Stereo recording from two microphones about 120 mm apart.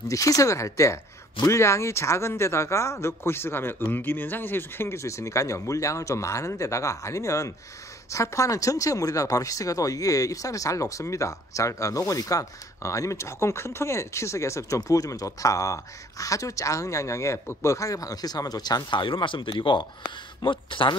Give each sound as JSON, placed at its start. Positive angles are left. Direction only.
{"t": 0.1, "sound": "speech", "side_deg": 25}